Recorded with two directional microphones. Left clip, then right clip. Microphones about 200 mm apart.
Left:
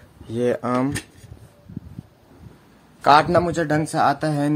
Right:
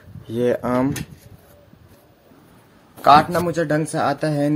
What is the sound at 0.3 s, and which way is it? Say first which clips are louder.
Speech: right 2 dB; centre (ahead or behind).